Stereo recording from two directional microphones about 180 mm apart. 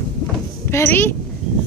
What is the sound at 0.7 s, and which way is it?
Speech, 15° left (ahead or behind).